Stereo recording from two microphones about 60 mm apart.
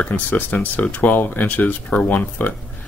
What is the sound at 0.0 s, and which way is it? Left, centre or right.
Speech, left.